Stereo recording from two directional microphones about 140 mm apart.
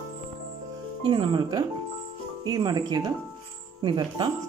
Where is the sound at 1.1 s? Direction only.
35° right (ahead or behind).